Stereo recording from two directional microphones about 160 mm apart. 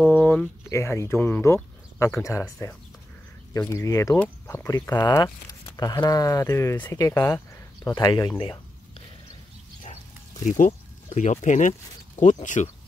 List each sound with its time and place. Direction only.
0.1 s speech: 10° left (ahead or behind); by 8.3 s 25° left (ahead or behind)
10.4 s speech: 50° left (ahead or behind)